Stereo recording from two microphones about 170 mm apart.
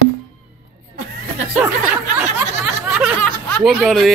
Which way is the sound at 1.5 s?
10° right (ahead or behind).